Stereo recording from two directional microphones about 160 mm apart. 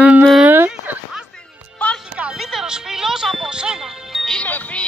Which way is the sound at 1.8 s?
10° left (ahead or behind).